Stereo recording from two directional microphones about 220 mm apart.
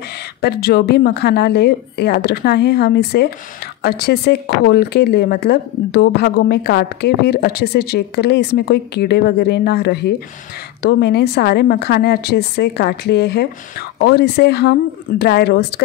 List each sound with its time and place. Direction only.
0.4 s speech: 45° left (ahead or behind)